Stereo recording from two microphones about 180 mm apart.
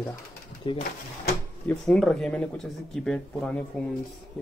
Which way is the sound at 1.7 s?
5° left (ahead or behind).